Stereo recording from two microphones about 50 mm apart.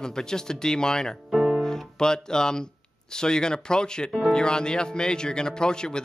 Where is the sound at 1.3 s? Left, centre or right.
Centre.